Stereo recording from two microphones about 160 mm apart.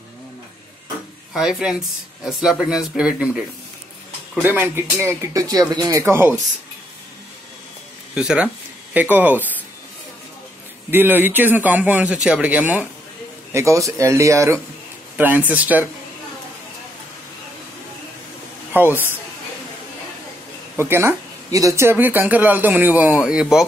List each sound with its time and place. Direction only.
1.3 s speech: 5° right (ahead or behind)
8.1 s speech: 5° right (ahead or behind)
10.9 s speech: 10° right (ahead or behind)
18.7 s speech: 10° right (ahead or behind)
20.7 s speech: 15° right (ahead or behind)